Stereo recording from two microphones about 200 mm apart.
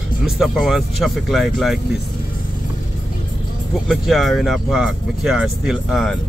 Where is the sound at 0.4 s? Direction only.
Centre (ahead or behind).